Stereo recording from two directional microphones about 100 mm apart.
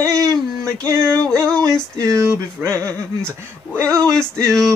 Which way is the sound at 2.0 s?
30° right (ahead or behind).